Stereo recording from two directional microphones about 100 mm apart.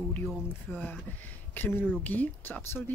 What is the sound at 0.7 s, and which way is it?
Speech, 20° left (ahead or behind).